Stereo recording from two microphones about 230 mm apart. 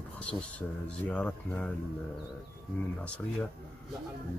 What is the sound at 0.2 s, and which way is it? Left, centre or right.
Speech, centre.